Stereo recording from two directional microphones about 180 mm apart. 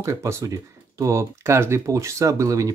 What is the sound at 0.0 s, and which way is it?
Speech, 15° right (ahead or behind).